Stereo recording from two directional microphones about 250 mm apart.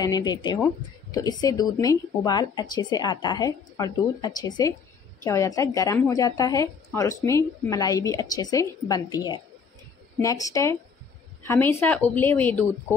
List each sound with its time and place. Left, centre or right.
0.0 s a woman's voice: centre